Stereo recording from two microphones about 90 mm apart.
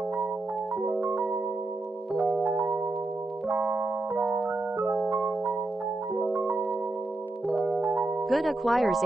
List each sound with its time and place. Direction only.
0.8 s music: 20° right (ahead or behind)
2.4 s music: 20° right (ahead or behind)
3.7 s keyboard: 20° right (ahead or behind)
4.7 s music: 20° right (ahead or behind)
8.3 s speech: centre (ahead or behind)